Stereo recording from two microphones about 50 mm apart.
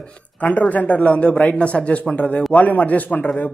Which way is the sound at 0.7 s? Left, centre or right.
Left.